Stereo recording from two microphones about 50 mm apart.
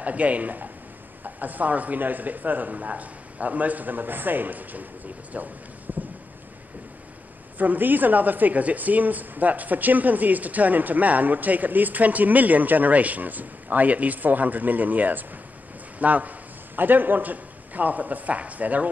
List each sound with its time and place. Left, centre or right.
0.0 s a woman's voice: right
5.9 s a sound: right
7.5 s a woman's voice: right